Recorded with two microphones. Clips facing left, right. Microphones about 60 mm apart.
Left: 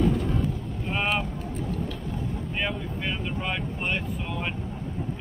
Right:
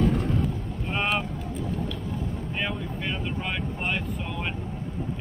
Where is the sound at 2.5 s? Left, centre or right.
Centre.